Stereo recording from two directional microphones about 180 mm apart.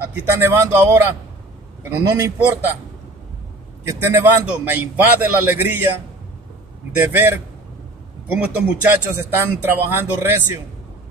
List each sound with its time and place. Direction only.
0.0 s a man's voice: 15° right (ahead or behind)
3.8 s a man's voice: 15° right (ahead or behind)
7.0 s a man's voice: 10° right (ahead or behind)